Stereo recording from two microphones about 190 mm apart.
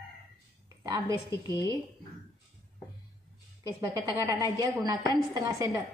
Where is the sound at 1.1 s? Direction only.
15° left (ahead or behind).